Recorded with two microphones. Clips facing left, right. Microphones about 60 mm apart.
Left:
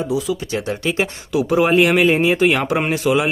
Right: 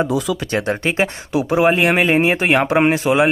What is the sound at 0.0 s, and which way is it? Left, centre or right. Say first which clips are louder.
Speech: right 2 dB; right.